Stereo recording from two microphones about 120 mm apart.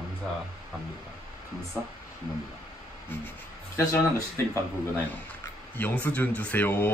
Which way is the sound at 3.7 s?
25° left (ahead or behind).